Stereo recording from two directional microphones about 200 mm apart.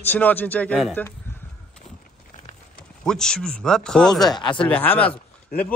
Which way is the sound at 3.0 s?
5° left (ahead or behind).